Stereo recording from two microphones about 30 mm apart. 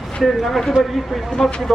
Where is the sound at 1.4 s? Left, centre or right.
Left.